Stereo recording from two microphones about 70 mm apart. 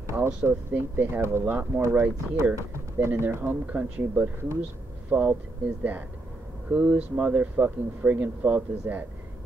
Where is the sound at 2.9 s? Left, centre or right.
Right.